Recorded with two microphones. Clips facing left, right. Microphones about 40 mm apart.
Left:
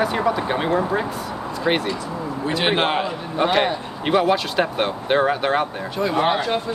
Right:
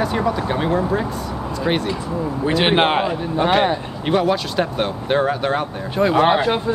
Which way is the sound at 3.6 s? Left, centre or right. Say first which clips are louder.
Right 2 dB; centre.